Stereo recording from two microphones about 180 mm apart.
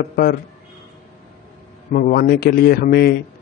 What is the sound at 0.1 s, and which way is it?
Speech, 55° left (ahead or behind).